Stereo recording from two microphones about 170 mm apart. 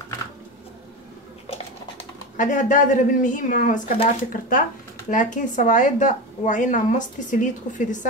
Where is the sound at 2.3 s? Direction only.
50° left (ahead or behind).